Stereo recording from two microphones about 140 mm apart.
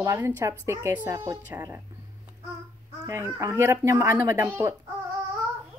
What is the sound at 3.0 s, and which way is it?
A woman's voice, 20° right (ahead or behind).